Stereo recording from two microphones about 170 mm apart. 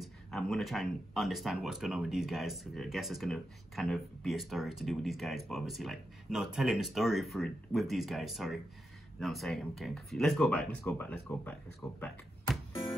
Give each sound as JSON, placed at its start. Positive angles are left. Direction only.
{"t": 0.0, "sound": "speech", "side_deg": 0}